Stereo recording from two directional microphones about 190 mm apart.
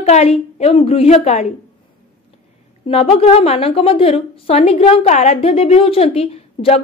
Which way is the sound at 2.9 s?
30° left (ahead or behind).